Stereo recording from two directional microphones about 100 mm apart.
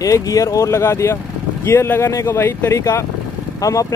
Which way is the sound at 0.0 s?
35° left (ahead or behind).